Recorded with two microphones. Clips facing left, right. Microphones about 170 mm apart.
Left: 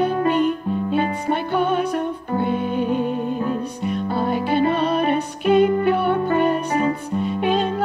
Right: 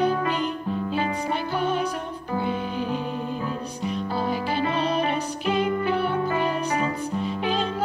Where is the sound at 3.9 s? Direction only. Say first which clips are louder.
Left 4 dB; 60° left (ahead or behind).